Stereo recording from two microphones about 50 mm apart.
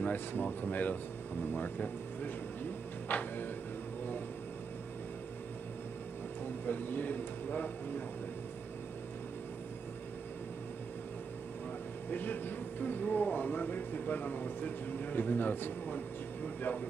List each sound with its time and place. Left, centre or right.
0.0 s speech: left
6.6 s speech: left
12.1 s speech: left